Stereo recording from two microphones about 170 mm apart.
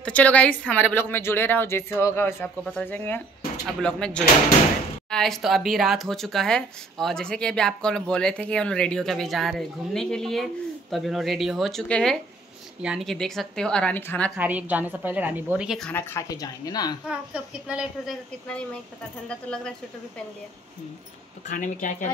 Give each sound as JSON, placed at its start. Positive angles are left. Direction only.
{"t": 0.0, "sound": "speech", "side_deg": 10}
{"t": 14.3, "sound": "a woman's voice", "side_deg": -10}
{"t": 15.9, "sound": "speech", "side_deg": 15}
{"t": 17.1, "sound": "speech", "side_deg": -5}
{"t": 19.2, "sound": "speech", "side_deg": 5}
{"t": 21.5, "sound": "a woman's voice", "side_deg": 50}